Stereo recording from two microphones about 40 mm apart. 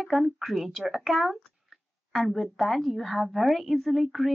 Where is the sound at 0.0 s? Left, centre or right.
Centre.